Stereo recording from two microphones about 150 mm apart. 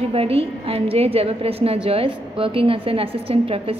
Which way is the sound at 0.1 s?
40° right (ahead or behind).